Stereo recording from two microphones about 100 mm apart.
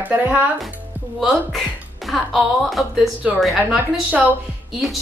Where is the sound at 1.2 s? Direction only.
Centre (ahead or behind).